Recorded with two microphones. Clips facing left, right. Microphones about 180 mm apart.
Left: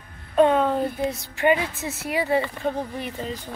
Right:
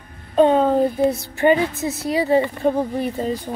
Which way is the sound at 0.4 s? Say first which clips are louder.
Right 4 dB; 30° right (ahead or behind).